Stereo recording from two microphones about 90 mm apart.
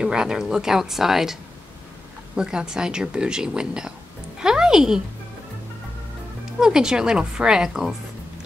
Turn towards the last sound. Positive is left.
turn(degrees=-5)  # may be behind; listen again after turning